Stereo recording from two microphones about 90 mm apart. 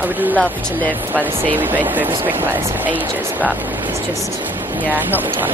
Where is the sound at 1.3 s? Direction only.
90° right.